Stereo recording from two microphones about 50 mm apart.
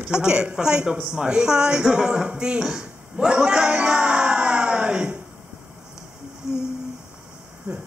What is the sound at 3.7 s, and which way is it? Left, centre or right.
Music, right.